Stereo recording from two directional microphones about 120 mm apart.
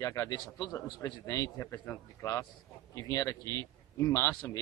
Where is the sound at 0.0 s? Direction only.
30° left (ahead or behind).